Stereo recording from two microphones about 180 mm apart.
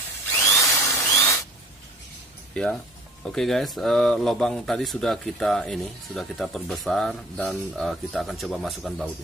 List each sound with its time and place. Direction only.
0.3 s drill: 15° left (ahead or behind)
2.5 s speech: 5° left (ahead or behind)